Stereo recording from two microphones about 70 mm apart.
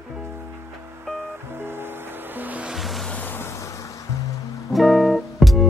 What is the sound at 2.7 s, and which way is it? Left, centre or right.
Music, centre.